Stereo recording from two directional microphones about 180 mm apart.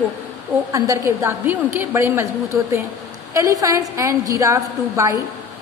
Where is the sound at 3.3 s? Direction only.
20° right (ahead or behind).